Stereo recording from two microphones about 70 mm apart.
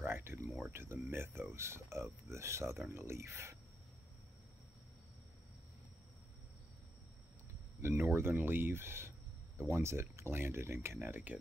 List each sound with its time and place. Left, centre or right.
0.0 s a sound: right
0.7 s speech: right
7.9 s speech: right